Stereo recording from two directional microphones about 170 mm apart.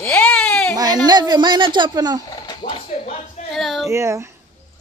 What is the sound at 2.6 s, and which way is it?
Speech, 50° left (ahead or behind).